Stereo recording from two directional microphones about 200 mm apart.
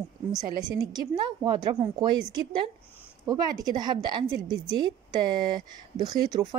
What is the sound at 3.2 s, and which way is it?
Speech, 20° right (ahead or behind).